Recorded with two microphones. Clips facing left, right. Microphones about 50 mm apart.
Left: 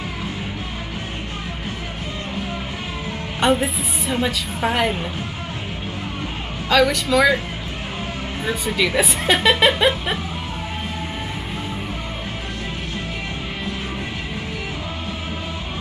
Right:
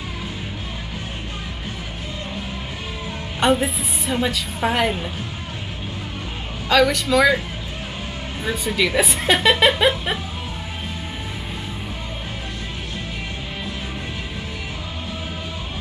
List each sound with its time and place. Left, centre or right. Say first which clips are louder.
3.3 s a woman's voice: even; centre
6.7 s a woman's voice: even; centre
8.5 s a woman's voice: even; centre